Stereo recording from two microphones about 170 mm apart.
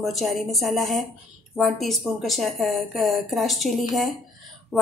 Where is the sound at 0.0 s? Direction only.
Centre (ahead or behind).